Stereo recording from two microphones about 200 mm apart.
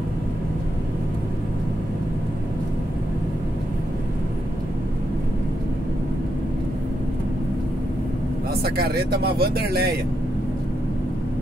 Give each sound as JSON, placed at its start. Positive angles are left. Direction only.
{"t": 8.6, "sound": "speech", "side_deg": -50}